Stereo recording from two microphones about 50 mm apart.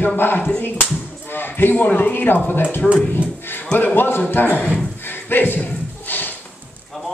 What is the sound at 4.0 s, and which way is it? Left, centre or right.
Speech, left.